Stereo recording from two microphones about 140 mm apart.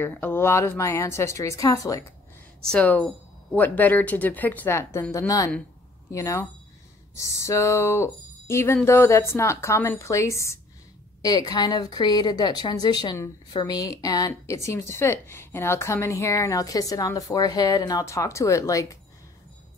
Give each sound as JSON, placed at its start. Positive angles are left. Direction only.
{"t": 0.0, "sound": "a woman's voice", "side_deg": 15}
{"t": 2.6, "sound": "a woman's voice", "side_deg": 5}